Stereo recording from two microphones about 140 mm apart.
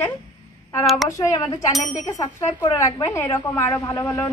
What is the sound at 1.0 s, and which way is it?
Speech, 25° left (ahead or behind).